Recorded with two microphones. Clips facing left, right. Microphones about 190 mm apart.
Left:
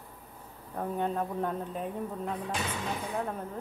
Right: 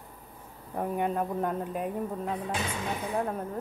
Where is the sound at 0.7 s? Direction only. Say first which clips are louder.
Right 2 dB; 10° right (ahead or behind).